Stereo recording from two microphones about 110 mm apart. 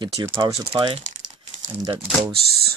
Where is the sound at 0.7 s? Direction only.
50° right (ahead or behind).